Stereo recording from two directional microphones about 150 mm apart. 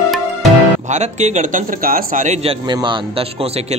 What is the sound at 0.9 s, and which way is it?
A man's voice, 50° right (ahead or behind).